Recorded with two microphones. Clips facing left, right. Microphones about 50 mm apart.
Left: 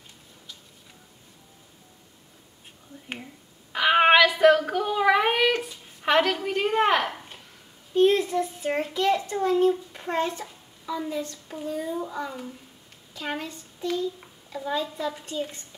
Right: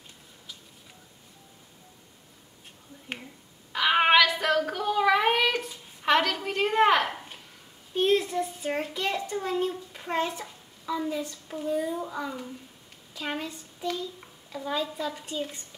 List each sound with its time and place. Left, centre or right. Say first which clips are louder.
3.7 s child singing: left 3 dB; centre
6.0 s a woman's voice: left 2 dB; centre